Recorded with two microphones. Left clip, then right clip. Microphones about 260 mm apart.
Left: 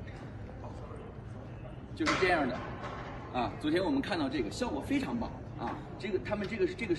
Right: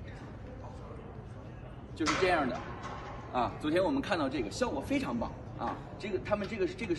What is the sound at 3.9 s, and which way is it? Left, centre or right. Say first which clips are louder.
Speech: right 1 dB; right.